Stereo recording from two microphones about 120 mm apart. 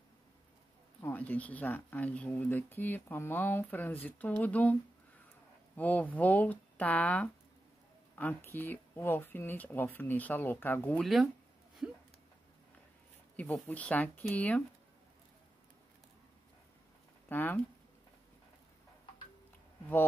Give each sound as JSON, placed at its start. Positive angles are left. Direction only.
{"t": 1.0, "sound": "speech", "side_deg": 15}
{"t": 5.8, "sound": "speech", "side_deg": 15}
{"t": 11.0, "sound": "speech", "side_deg": 0}
{"t": 13.4, "sound": "speech", "side_deg": 15}
{"t": 17.3, "sound": "speech", "side_deg": 15}